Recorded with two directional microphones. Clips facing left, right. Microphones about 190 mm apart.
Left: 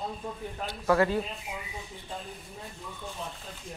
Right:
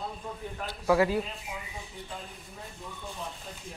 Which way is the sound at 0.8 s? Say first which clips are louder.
Even; 10° right (ahead or behind).